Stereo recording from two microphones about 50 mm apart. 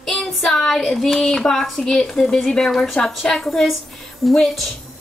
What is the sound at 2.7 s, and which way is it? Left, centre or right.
A woman's voice, centre.